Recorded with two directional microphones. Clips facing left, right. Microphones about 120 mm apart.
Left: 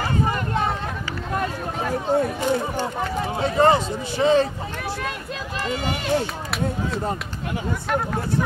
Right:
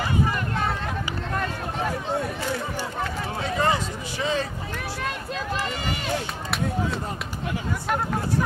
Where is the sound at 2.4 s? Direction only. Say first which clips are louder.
Left 6 dB; 20° left (ahead or behind).